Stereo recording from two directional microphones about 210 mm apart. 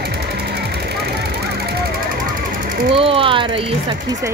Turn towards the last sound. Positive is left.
turn(degrees=-25)  # may be behind; listen again after turning